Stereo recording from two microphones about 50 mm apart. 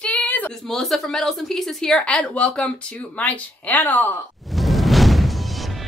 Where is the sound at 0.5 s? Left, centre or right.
Centre; by 4.1 s left.